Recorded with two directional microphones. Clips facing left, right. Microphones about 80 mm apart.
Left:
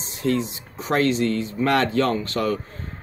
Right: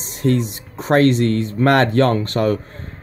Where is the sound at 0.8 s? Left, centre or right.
Right.